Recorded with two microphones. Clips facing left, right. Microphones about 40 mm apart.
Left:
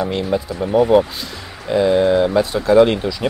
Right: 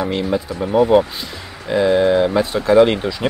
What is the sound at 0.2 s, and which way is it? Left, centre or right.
Speech, centre.